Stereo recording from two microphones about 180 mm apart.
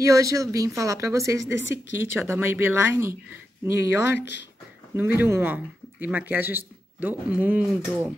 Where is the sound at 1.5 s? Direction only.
90° left.